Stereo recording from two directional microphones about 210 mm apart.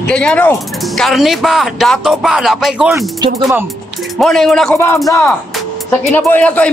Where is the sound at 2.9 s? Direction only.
15° right (ahead or behind).